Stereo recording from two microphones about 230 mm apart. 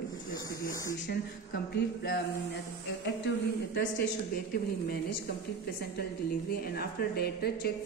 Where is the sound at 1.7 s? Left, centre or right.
Left.